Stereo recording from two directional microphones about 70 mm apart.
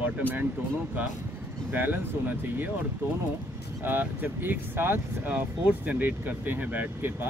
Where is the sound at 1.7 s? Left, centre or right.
Right.